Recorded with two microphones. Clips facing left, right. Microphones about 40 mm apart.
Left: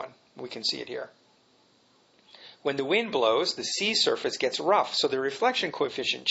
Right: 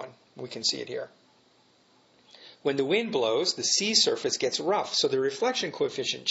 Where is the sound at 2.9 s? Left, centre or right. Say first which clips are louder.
Left 1 dB; left.